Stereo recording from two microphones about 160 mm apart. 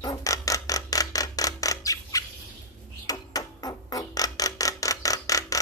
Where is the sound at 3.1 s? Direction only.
25° left (ahead or behind).